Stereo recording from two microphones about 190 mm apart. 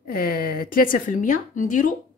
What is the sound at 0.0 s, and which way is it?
Speech, 50° left (ahead or behind).